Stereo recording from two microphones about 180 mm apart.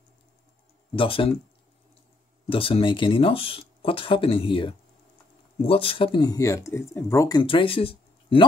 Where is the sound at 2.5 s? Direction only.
30° left (ahead or behind).